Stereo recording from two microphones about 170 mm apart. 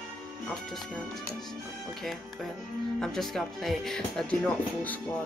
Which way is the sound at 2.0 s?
Centre (ahead or behind).